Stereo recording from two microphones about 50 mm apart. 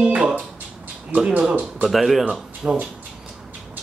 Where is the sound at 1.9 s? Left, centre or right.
Centre.